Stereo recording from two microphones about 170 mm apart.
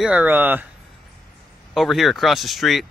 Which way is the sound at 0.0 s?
10° right (ahead or behind).